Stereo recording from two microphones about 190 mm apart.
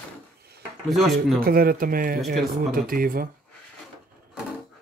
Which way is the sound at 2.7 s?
50° right (ahead or behind).